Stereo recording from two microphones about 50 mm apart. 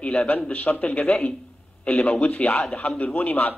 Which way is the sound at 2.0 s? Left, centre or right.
Centre.